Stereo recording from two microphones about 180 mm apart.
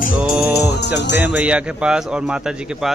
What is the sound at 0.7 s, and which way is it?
Music, 70° left (ahead or behind).